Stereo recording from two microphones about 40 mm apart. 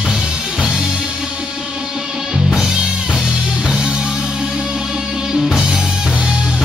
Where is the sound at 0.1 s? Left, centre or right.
Right.